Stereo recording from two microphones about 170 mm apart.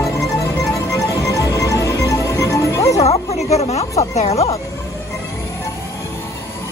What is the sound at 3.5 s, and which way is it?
Speech, 40° left (ahead or behind).